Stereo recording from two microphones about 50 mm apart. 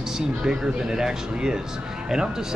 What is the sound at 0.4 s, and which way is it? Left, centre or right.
Speech, centre.